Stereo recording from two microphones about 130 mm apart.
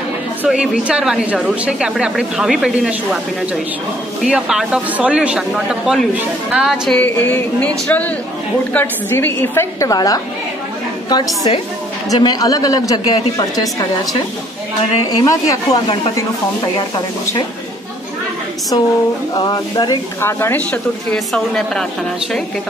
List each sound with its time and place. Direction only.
0.4 s a woman's voice: 10° right (ahead or behind)
4.2 s a woman's voice: 5° right (ahead or behind)
6.9 s a woman's voice: 15° left (ahead or behind); by 13.8 s 30° left (ahead or behind)
15.0 s a woman's voice: 30° left (ahead or behind)
19.3 s a woman's voice: 30° left (ahead or behind)
20.2 s speech: 20° left (ahead or behind)
21.3 s a woman's voice: centre (ahead or behind)